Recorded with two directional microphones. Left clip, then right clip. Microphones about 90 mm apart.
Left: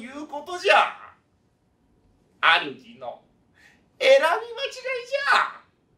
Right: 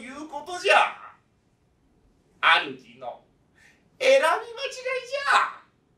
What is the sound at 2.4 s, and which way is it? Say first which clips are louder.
A man's voice: left 1 dB; 20° right (ahead or behind).